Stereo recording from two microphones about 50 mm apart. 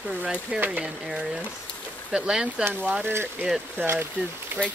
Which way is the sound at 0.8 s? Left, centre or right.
Centre.